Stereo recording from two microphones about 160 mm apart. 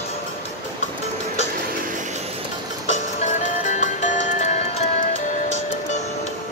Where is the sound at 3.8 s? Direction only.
50° left (ahead or behind).